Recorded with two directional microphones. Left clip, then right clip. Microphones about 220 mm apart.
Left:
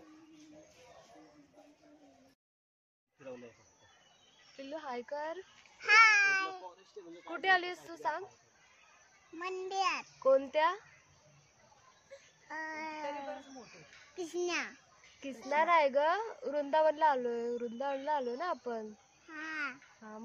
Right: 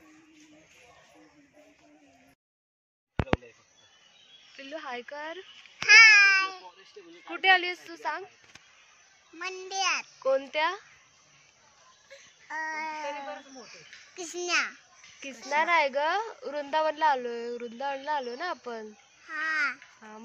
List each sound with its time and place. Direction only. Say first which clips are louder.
4.6 s a woman's voice: right 4 dB; 5° right (ahead or behind)
5.9 s babbling: right 8 dB; 20° left (ahead or behind)
7.2 s a woman's voice: right 7 dB; 10° right (ahead or behind)
9.4 s a child's voice: right 3 dB; 20° left (ahead or behind)
10.2 s a woman's voice: right 1 dB; 10° right (ahead or behind)
12.1 s a sound: right 7 dB; 15° left (ahead or behind)
13.0 s speech: right 5 dB; centre (ahead or behind)
14.1 s a child's voice: right 7 dB; 20° left (ahead or behind)
15.5 s a woman's voice: right 3 dB; 5° right (ahead or behind)
19.2 s babbling: right 11 dB; 20° left (ahead or behind)